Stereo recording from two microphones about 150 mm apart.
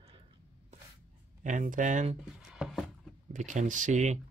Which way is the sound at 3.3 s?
55° right (ahead or behind).